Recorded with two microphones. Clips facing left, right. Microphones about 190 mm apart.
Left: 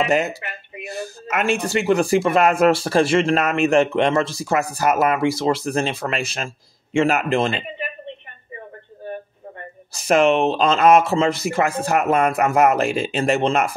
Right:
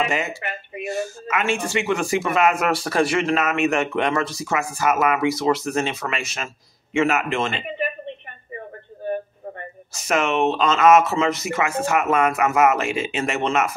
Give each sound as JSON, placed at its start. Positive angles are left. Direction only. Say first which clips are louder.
{"t": 0.0, "sound": "speech", "louder": "left 4 dB", "side_deg": 35}
{"t": 9.9, "sound": "speech", "louder": "left 5 dB", "side_deg": 35}